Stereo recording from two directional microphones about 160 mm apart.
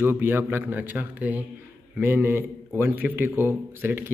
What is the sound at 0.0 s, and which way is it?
A man's voice, 15° right (ahead or behind).